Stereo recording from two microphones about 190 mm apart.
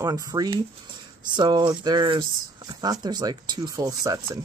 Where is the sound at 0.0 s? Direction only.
20° right (ahead or behind).